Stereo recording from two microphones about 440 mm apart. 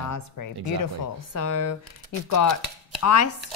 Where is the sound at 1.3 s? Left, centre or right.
Left.